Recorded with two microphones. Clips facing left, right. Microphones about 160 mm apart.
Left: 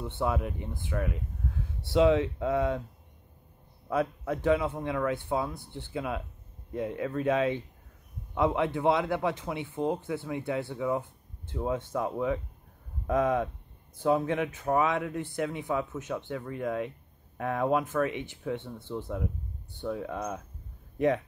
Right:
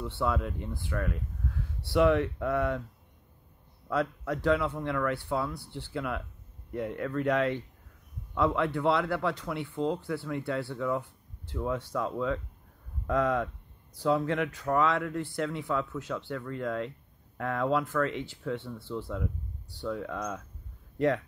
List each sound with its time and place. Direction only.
0.0 s speech: 20° left (ahead or behind)
3.9 s speech: 20° left (ahead or behind)